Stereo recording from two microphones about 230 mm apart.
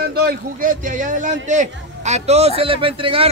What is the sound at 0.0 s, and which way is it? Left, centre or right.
Speech, right.